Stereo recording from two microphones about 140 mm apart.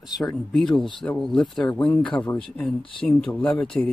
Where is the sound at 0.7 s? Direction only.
35° left (ahead or behind).